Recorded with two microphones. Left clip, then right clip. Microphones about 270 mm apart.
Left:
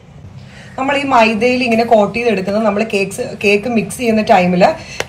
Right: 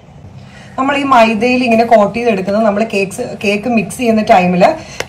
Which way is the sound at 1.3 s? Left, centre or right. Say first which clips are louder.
Right 2 dB; centre.